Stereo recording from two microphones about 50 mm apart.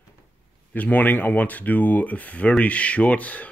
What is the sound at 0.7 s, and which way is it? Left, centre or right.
Speech, left.